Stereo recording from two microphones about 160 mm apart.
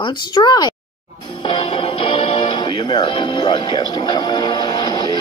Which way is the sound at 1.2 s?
30° left (ahead or behind).